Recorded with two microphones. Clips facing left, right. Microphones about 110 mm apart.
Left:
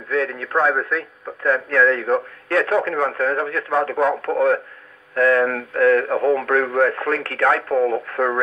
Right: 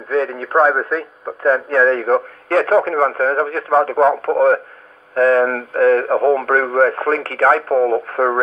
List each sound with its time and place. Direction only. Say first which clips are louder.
0.1 s speech: right 4 dB; 30° right (ahead or behind)
7.6 s speech: right 4 dB; 30° right (ahead or behind)